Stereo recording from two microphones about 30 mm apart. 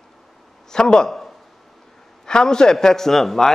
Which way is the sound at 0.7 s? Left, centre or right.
Left.